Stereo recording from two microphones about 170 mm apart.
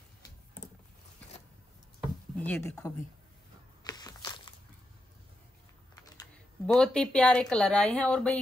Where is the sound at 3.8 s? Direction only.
20° left (ahead or behind).